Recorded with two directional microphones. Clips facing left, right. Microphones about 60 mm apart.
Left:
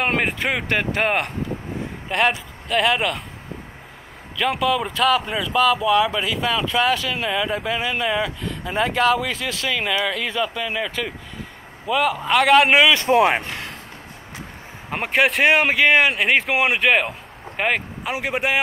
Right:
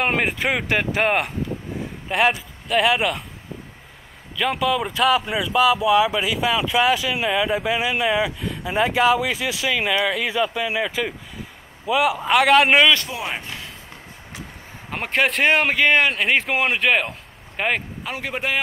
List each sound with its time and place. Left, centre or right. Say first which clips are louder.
0.0 s speech: even; centre
4.4 s speech: left 1 dB; centre
13.1 s speech: left 12 dB; left
14.9 s speech: left 2 dB; centre
18.0 s a man's voice: left 3 dB; centre